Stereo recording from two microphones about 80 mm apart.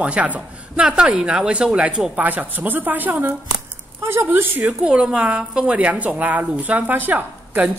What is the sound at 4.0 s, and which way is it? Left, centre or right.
Speech, right.